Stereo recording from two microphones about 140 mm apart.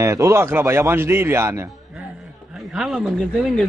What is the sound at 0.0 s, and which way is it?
Speech, 20° right (ahead or behind).